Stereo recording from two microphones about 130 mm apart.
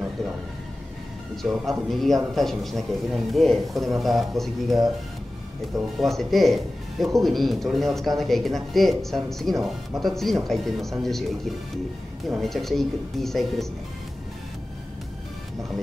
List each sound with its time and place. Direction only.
1.3 s speech: centre (ahead or behind)
5.9 s speech: centre (ahead or behind)